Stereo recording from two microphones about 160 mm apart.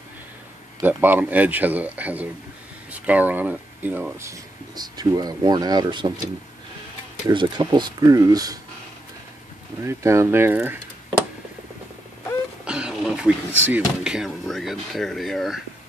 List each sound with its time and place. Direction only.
0.8 s speech: 10° right (ahead or behind); by 6.1 s 30° right (ahead or behind)
7.2 s speech: 25° right (ahead or behind)
9.8 s speech: 15° right (ahead or behind)
12.6 s speech: 5° right (ahead or behind)